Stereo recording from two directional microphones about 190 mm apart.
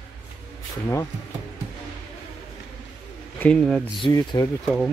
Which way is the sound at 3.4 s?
5° left (ahead or behind).